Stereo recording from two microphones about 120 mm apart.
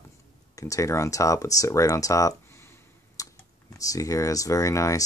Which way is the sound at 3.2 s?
30° left (ahead or behind).